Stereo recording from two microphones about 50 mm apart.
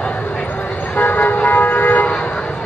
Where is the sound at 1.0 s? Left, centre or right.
Left.